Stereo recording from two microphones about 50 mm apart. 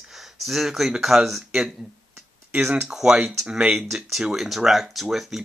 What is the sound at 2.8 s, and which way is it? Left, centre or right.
Speech, centre.